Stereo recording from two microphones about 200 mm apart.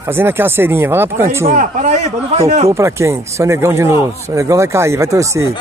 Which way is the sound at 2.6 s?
15° right (ahead or behind).